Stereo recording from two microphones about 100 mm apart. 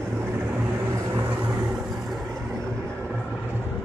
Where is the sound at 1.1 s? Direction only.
20° right (ahead or behind).